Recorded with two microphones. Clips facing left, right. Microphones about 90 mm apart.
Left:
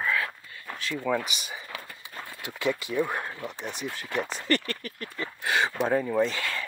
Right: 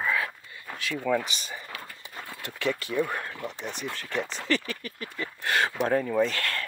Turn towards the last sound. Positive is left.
turn(degrees=5)  # may be behind; listen again after turning